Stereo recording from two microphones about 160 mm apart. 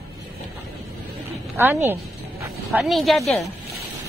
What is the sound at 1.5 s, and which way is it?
Speech, 15° right (ahead or behind).